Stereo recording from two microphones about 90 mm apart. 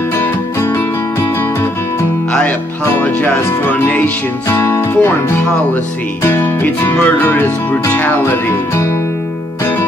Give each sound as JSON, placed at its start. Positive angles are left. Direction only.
{"t": 0.2, "sound": "music", "side_deg": 25}
{"t": 2.8, "sound": "music", "side_deg": 20}
{"t": 6.2, "sound": "music", "side_deg": 25}